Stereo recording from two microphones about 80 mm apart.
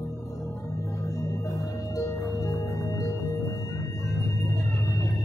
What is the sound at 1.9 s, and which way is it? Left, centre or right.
Music, left.